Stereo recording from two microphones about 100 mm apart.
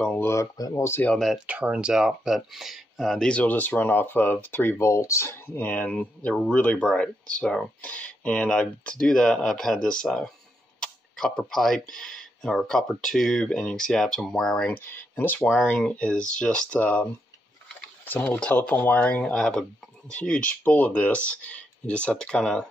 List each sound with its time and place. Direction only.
0.1 s speech: 25° left (ahead or behind)
1.0 s speech: 5° left (ahead or behind)
1.4 s speech: 10° right (ahead or behind)
3.3 s speech: 15° left (ahead or behind)
14.7 s speech: 20° left (ahead or behind)
15.6 s speech: 10° left (ahead or behind)